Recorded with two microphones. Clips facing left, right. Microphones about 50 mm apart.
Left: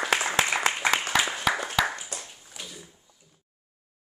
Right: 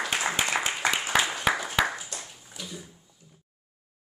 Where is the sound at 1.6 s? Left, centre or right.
Centre.